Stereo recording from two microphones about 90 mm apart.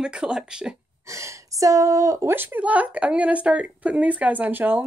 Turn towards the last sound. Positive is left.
turn(degrees=-20)  # may be behind; listen again after turning